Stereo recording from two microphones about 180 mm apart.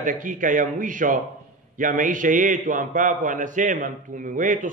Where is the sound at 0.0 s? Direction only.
45° right (ahead or behind).